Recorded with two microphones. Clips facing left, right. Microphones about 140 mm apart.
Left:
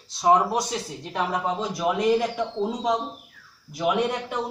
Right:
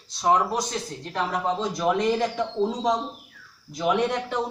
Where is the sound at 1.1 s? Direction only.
5° left (ahead or behind).